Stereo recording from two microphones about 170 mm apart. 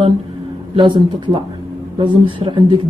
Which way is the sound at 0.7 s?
30° right (ahead or behind).